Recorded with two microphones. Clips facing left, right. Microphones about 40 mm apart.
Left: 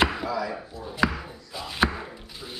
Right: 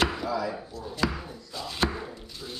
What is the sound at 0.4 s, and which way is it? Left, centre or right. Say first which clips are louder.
Chop: left 1 dB; centre.